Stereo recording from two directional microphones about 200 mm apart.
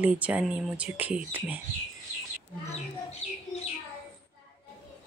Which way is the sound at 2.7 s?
30° left (ahead or behind).